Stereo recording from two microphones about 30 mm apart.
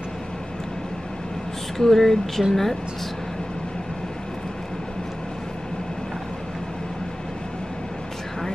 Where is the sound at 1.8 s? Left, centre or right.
Centre.